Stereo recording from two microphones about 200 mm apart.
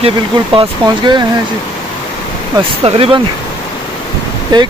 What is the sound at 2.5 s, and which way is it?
Speech, 30° right (ahead or behind).